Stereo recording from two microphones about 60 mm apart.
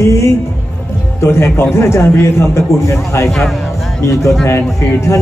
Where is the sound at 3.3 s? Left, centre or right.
Centre.